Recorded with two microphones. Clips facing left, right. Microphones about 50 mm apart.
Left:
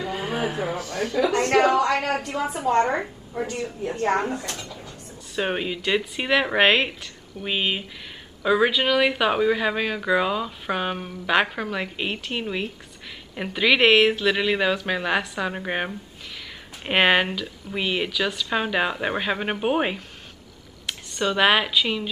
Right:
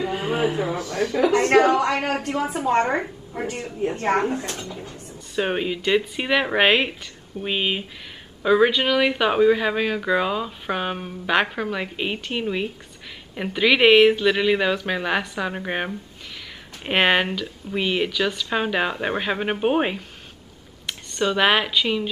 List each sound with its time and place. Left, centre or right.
0.0 s a sound: right
0.7 s a woman's voice: right
5.3 s speech: centre